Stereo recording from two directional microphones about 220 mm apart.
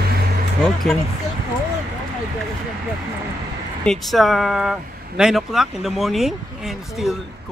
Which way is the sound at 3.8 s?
Centre (ahead or behind).